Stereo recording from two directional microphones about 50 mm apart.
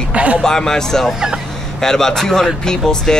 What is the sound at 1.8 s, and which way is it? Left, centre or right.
Speech, centre.